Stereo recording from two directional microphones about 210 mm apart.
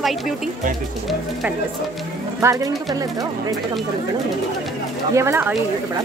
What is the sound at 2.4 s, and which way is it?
Speech, 15° right (ahead or behind).